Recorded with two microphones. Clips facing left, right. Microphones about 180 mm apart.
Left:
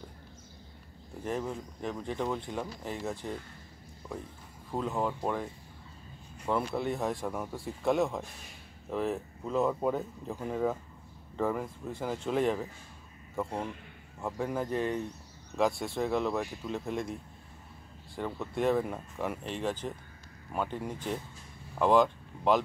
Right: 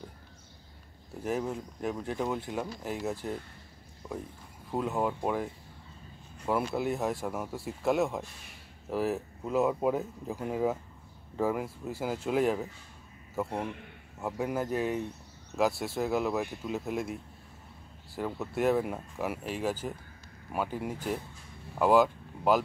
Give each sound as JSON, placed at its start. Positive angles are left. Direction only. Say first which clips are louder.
{"t": 1.2, "sound": "speech", "louder": "right 2 dB", "side_deg": -5}
{"t": 4.0, "sound": "a sound", "louder": "right 2 dB", "side_deg": -20}
{"t": 4.6, "sound": "speech", "louder": "right 2 dB", "side_deg": -5}